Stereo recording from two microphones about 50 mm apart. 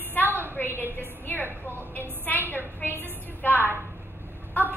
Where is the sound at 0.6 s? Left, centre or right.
Left.